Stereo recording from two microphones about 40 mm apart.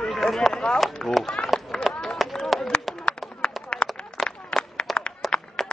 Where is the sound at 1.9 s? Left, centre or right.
Centre.